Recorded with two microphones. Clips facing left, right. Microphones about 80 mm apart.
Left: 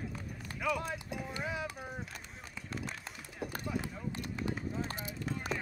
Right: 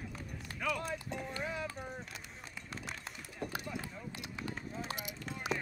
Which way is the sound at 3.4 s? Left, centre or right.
Centre.